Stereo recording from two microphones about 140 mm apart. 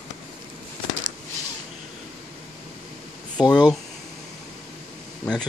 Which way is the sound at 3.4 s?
30° left (ahead or behind).